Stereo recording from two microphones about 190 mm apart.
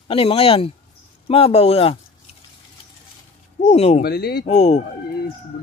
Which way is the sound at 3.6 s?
35° left (ahead or behind).